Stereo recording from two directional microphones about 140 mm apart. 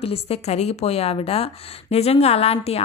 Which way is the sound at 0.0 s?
45° left (ahead or behind).